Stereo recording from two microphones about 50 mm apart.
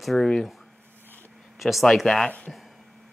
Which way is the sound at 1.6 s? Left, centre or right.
Centre.